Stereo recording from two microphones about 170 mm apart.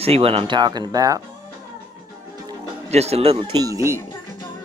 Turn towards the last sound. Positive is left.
turn(degrees=-20)  # may be behind; listen again after turning